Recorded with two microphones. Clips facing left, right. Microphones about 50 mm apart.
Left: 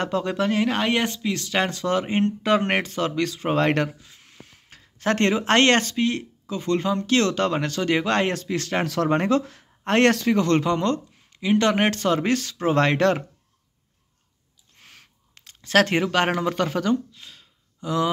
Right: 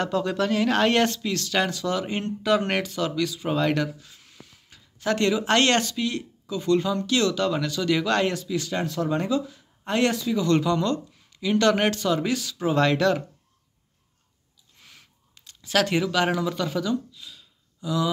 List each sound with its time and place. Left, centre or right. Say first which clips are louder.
0.0 s speech: left 1 dB; left; by 1.2 s centre
1.2 s speech: left 1 dB; left
4.0 s speech: left 1 dB; left
8.4 s speech: left 2 dB; left
8.8 s speech: left 3 dB; left
9.1 s speech: left 5 dB; left
11.9 s speech: left 3 dB; left
14.8 s a sound: left 2 dB; left
15.3 s speech: left 4 dB; left